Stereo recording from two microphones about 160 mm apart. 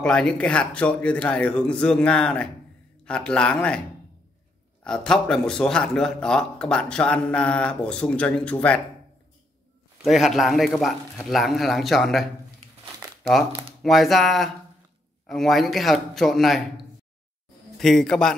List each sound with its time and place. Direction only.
0.0 s speech: 5° left (ahead or behind)
4.8 s speech: 5° left (ahead or behind)
10.0 s speech: centre (ahead or behind)
13.5 s speech: 35° right (ahead or behind)
13.8 s speech: centre (ahead or behind)